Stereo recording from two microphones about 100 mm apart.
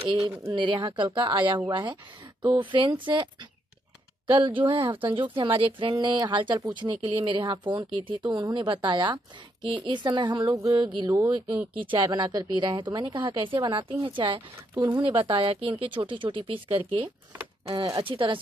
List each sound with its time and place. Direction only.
0.2 s speech: 30° right (ahead or behind)
0.6 s a woman's voice: 50° right (ahead or behind)
4.3 s a woman's voice: 55° right (ahead or behind)
10.5 s speech: 35° right (ahead or behind)
10.8 s a woman's voice: 50° right (ahead or behind)
11.1 s speech: 35° right (ahead or behind)
11.8 s a woman's voice: 55° right (ahead or behind)